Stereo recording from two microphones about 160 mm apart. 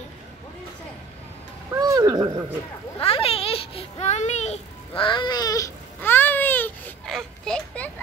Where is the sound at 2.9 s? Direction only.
35° left (ahead or behind); by 7.9 s 5° left (ahead or behind).